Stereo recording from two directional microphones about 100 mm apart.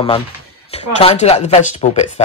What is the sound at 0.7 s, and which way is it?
Speech, 90° left.